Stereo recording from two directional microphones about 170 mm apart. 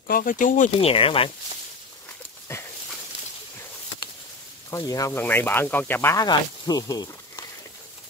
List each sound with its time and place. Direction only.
0.1 s speech: 55° left (ahead or behind)
0.7 s speech: 35° left (ahead or behind)
2.5 s dog: 15° left (ahead or behind)
4.6 s speech: 20° left (ahead or behind)